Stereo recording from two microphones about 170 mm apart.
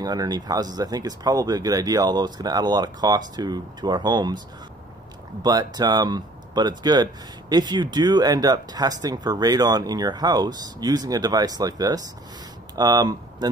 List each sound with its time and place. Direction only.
0.0 s speech: 25° right (ahead or behind)
5.4 s speech: 25° right (ahead or behind)